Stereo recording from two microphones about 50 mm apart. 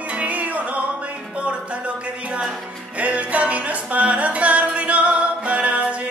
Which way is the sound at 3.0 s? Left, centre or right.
Right.